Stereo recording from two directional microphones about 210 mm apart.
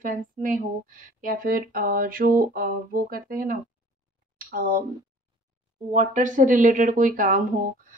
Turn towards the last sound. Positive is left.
turn(degrees=-40)  # may be behind; listen again after turning